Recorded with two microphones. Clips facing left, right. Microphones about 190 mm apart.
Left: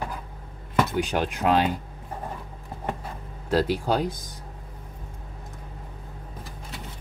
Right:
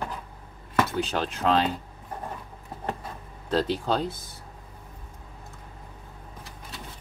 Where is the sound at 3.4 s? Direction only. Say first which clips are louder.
Left 2 dB; 10° left (ahead or behind).